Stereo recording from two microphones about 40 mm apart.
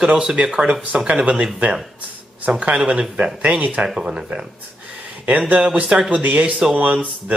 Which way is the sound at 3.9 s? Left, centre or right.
Right.